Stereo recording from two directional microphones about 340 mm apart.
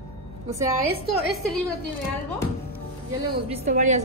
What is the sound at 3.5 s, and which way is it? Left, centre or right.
Speech, right.